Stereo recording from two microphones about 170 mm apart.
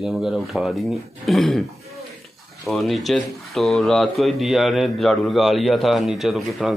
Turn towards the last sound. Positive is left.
turn(degrees=0)  # may be behind; listen again after turning